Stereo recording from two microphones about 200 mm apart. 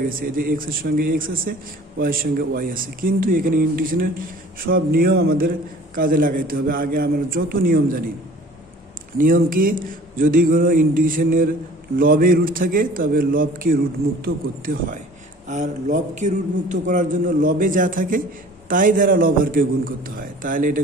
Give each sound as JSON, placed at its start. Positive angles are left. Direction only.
{"t": 0.0, "sound": "a man's voice", "side_deg": -45}
{"t": 9.2, "sound": "a man's voice", "side_deg": -45}